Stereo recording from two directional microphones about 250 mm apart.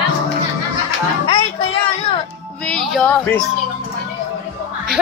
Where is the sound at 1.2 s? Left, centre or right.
Left.